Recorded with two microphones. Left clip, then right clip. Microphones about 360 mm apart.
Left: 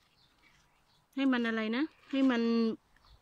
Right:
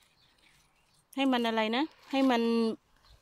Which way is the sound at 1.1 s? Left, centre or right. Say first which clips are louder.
Right 3 dB; centre.